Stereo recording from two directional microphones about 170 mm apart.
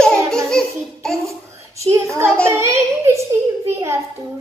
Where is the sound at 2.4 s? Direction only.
15° right (ahead or behind).